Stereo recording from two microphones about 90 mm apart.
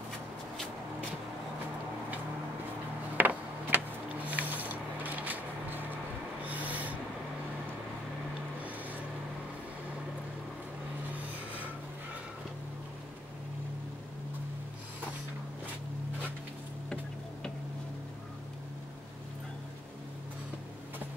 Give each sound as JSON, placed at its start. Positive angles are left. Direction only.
{"t": 3.2, "sound": "power windows", "side_deg": -20}
{"t": 6.4, "sound": "owl", "side_deg": -15}
{"t": 11.1, "sound": "a sound", "side_deg": -15}